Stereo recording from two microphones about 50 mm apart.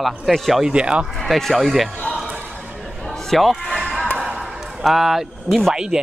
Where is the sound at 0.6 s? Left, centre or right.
Centre.